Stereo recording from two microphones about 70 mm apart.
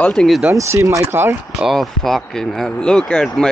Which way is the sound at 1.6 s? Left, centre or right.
Centre.